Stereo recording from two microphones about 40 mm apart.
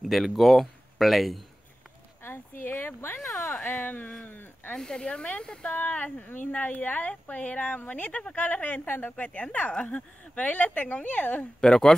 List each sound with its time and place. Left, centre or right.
0.0 s speech: centre
2.2 s a sound: left
2.7 s a sound: left
3.2 s a sound: centre
3.7 s speech: left
4.3 s a sound: left
4.7 s speech: centre
5.8 s a woman's voice: left
6.4 s a woman's voice: left
8.8 s a woman's voice: left
9.1 s speech: left
11.6 s speech: centre